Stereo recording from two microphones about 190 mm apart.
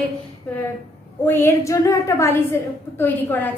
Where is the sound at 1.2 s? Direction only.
10° left (ahead or behind).